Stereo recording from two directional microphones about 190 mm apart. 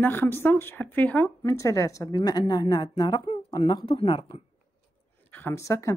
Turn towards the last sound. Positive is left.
turn(degrees=15)  # may be behind; listen again after turning